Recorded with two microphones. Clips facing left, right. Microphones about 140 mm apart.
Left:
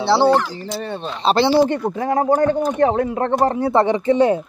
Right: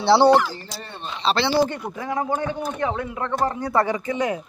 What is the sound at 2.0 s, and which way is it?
Speech, 45° left (ahead or behind).